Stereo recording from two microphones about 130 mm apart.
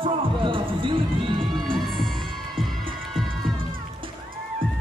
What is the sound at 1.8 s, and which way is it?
Music, centre (ahead or behind).